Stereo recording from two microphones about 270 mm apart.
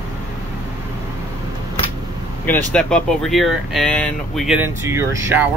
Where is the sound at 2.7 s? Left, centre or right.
Centre.